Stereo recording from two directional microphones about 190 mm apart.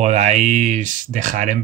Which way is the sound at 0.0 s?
35° right (ahead or behind).